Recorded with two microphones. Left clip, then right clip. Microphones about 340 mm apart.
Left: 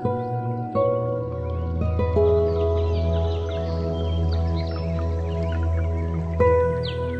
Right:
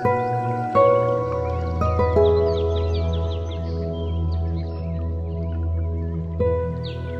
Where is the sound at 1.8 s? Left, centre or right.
Centre.